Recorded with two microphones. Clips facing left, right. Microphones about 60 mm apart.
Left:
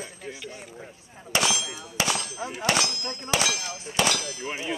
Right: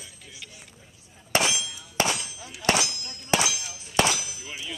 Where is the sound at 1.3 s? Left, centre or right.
Right.